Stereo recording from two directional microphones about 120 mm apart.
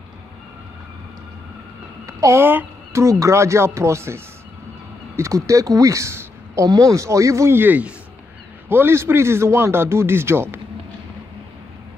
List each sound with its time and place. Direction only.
2.0 s speech: 25° right (ahead or behind)